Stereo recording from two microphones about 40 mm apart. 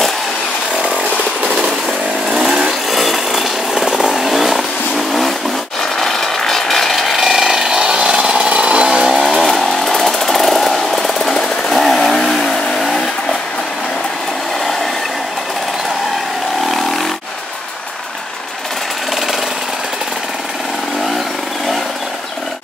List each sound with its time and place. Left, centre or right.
2.2 s chainsaw: centre
3.7 s vehicle: centre
5.9 s a sound: centre
7.2 s power tool: centre
8.5 s vehicle: right
8.8 s vehicle: centre
9.3 s chainsaw: centre